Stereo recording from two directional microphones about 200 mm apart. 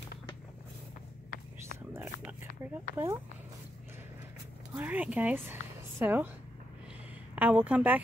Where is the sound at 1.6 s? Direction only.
10° right (ahead or behind).